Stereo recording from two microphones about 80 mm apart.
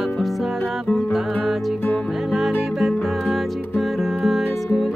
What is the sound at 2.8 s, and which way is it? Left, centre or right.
Music, centre.